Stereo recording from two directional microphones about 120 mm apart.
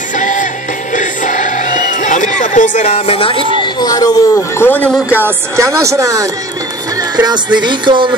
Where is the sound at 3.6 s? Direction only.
30° left (ahead or behind).